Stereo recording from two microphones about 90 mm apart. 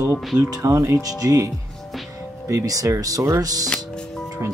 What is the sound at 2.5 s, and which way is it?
Speech, 40° right (ahead or behind).